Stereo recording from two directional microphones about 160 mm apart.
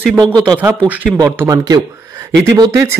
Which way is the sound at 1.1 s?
20° right (ahead or behind).